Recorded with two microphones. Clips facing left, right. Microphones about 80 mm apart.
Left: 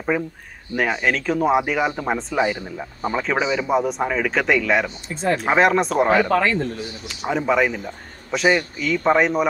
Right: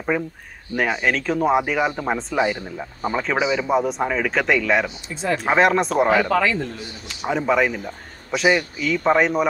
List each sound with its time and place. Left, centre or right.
0.1 s speech: centre
5.1 s speech: left
5.4 s speech: centre
6.2 s speech: left
7.1 s speech: centre